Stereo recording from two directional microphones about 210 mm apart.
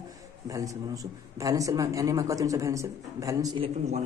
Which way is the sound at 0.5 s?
15° right (ahead or behind).